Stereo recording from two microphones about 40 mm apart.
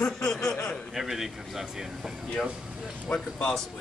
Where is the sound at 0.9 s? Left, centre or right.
Centre.